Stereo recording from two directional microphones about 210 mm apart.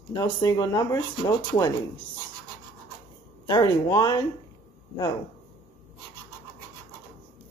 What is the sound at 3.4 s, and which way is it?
Speech, 20° left (ahead or behind).